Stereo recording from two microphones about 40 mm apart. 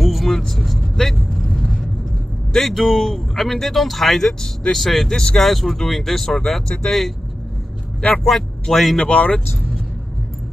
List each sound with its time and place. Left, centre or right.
0.0 s vehicle: centre
2.5 s speech: centre
5.1 s speech: centre
5.4 s speech: centre
8.2 s speech: centre
9.0 s speech: left